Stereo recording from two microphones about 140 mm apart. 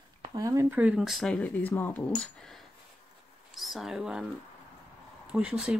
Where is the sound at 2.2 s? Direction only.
5° left (ahead or behind).